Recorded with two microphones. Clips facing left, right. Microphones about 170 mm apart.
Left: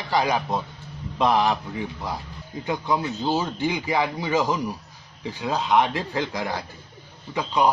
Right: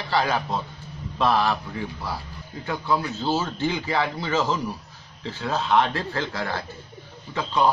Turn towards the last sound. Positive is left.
turn(degrees=15)  # may be behind; listen again after turning